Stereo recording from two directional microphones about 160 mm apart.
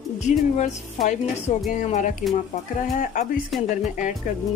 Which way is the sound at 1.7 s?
50° left (ahead or behind).